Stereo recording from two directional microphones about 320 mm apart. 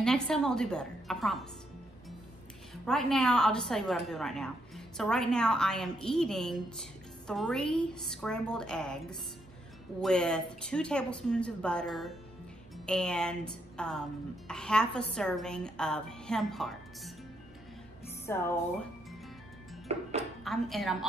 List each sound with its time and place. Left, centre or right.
0.0 s a woman's voice: centre
2.7 s a woman's voice: centre
18.2 s speech: centre
19.9 s speech: centre
20.4 s a woman's voice: centre